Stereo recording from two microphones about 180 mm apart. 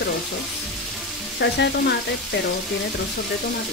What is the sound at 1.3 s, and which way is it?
Frying, 70° left (ahead or behind).